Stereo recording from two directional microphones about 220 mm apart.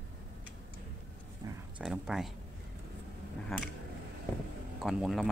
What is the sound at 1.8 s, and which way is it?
Speech, centre (ahead or behind).